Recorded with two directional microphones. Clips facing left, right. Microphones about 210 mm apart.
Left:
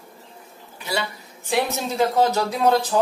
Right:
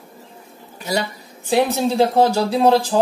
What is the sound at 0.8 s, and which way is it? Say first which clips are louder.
A woman's voice: right 4 dB; 40° right (ahead or behind).